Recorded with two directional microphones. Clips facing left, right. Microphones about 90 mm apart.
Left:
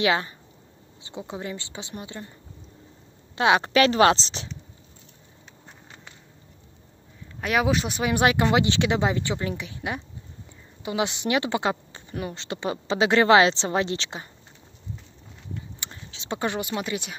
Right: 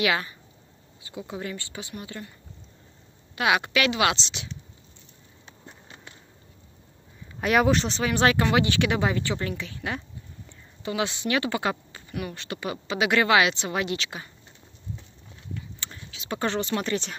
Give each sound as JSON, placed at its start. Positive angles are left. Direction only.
{"t": 0.0, "sound": "speech", "side_deg": 30}
{"t": 3.3, "sound": "a woman's voice", "side_deg": 30}
{"t": 7.3, "sound": "speech", "side_deg": 0}
{"t": 15.9, "sound": "a sound", "side_deg": 30}
{"t": 16.3, "sound": "speech", "side_deg": 15}